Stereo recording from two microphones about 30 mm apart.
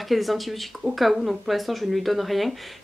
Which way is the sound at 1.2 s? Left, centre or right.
Centre.